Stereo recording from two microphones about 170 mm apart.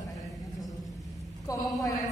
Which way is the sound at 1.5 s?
20° left (ahead or behind).